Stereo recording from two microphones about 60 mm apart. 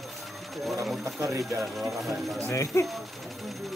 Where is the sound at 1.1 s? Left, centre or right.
Right.